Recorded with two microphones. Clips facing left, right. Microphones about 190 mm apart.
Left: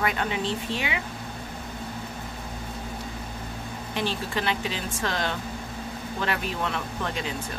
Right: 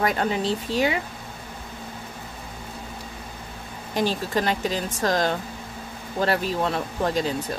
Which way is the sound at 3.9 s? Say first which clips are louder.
Right 5 dB; 40° right (ahead or behind).